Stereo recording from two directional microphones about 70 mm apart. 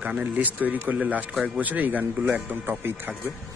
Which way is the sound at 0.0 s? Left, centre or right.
Right.